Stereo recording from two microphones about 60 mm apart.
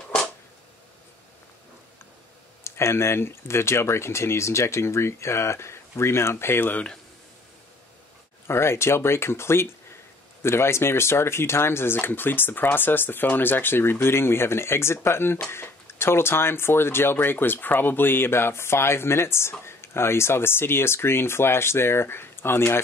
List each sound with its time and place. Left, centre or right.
2.6 s speech: left
8.5 s speech: left